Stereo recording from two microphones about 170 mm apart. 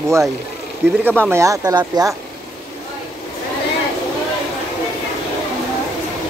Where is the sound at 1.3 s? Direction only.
15° right (ahead or behind).